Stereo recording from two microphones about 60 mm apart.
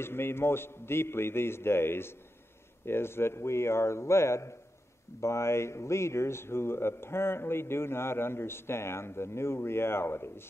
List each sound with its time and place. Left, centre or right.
0.0 s a man's voice: left